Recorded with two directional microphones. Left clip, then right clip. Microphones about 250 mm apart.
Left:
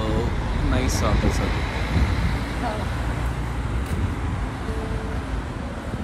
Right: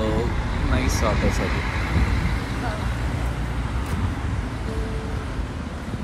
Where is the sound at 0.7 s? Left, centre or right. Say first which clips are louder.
Right 1 dB; centre.